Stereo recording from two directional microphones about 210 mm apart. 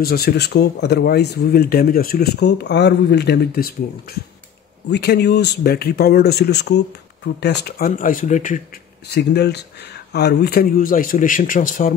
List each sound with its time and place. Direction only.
0.0 s speech: 50° left (ahead or behind)
4.8 s speech: 50° left (ahead or behind)
9.0 s speech: 50° left (ahead or behind)